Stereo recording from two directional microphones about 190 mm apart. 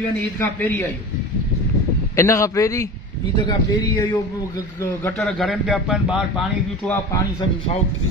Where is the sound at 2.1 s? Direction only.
15° left (ahead or behind).